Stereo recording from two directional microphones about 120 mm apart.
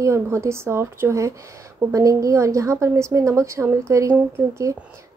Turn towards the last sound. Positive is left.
turn(degrees=-25)  # may be behind; listen again after turning